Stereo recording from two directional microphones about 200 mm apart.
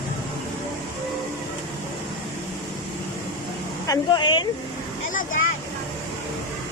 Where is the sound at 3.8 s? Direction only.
20° left (ahead or behind).